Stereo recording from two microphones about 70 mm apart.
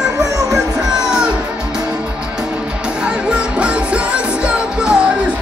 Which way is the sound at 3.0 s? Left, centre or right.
Centre.